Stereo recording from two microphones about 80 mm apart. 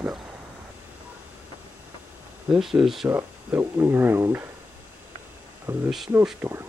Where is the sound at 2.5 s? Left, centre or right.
Centre.